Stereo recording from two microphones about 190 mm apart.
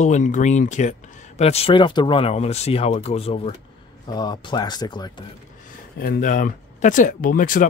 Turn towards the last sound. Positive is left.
turn(degrees=45)  # may be behind; listen again after turning